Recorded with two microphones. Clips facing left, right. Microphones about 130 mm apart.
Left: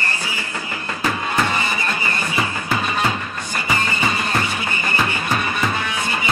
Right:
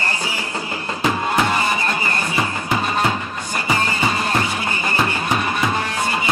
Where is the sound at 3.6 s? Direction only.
5° right (ahead or behind).